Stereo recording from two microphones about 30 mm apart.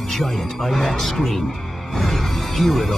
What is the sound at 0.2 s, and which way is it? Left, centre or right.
Speech, centre.